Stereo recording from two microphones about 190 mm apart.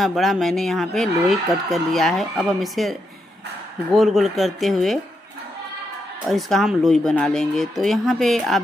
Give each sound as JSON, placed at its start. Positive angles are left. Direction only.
{"t": 0.0, "sound": "speech", "side_deg": 0}
{"t": 6.2, "sound": "speech", "side_deg": 0}